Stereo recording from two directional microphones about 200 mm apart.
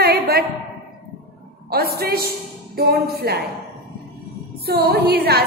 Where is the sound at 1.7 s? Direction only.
50° right (ahead or behind).